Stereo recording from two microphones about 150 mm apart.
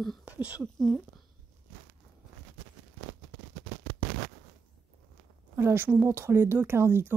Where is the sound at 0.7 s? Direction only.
5° left (ahead or behind).